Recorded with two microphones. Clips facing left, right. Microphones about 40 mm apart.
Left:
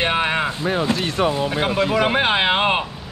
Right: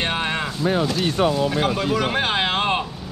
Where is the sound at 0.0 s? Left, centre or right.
Centre.